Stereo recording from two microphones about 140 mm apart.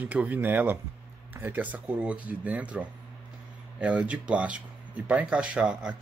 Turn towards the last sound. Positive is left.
turn(degrees=-10)  # may be behind; listen again after turning